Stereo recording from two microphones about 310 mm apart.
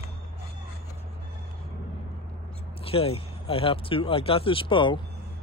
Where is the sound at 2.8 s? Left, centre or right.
Centre.